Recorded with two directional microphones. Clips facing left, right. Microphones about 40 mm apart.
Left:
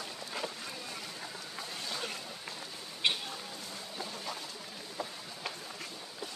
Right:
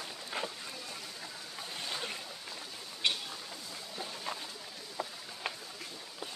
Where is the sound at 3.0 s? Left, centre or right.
Left.